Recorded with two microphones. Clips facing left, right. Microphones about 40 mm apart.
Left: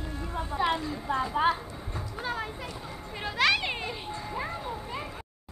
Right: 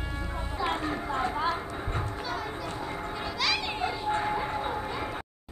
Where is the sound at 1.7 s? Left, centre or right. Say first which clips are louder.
Right 5 dB; right.